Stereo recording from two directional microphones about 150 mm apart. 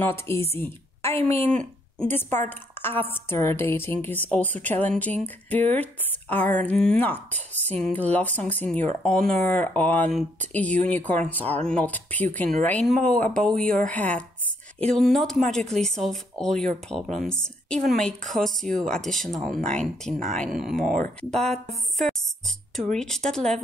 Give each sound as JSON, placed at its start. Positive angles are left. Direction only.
{"t": 0.0, "sound": "a woman's voice", "side_deg": 15}
{"t": 0.6, "sound": "a sound", "side_deg": 15}
{"t": 1.5, "sound": "a woman's voice", "side_deg": 5}